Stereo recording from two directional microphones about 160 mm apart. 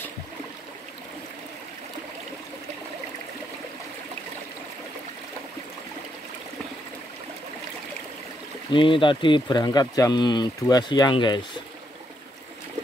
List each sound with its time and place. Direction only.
8.7 s speech: 30° left (ahead or behind)